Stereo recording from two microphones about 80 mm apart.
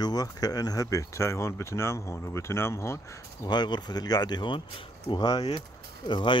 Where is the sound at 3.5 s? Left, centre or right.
Left.